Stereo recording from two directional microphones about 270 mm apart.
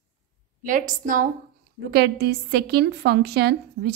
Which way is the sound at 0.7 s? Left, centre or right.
Right.